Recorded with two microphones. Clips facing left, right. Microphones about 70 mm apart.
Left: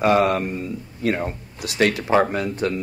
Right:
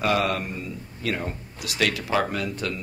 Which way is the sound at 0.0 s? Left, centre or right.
Left.